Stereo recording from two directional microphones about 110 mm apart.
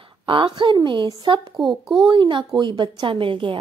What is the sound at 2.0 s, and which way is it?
A woman's voice, 45° right (ahead or behind).